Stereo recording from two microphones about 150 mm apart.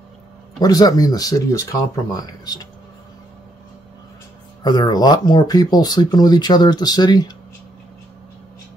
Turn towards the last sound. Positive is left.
turn(degrees=25)  # may be behind; listen again after turning